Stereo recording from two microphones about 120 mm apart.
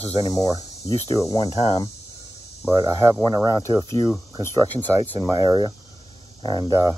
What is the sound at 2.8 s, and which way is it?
Speech, 25° right (ahead or behind).